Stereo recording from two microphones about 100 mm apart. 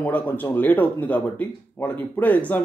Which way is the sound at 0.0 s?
20° left (ahead or behind).